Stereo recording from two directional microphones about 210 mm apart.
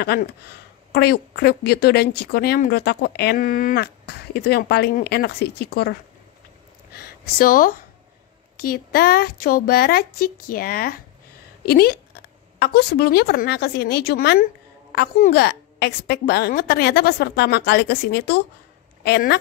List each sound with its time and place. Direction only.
0.0 s speech: 50° left (ahead or behind)
6.9 s a sound: 45° left (ahead or behind)
8.5 s a woman's voice: 45° left (ahead or behind)